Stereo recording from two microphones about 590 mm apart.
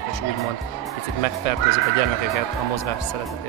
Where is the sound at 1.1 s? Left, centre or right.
Left.